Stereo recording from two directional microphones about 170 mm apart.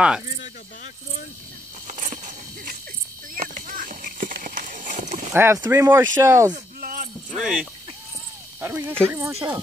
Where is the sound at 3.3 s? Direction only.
55° right (ahead or behind).